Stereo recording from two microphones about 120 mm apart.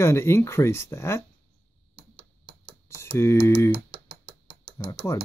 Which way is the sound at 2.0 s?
50° right (ahead or behind).